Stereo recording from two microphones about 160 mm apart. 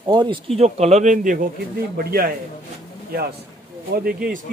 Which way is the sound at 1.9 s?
70° right (ahead or behind).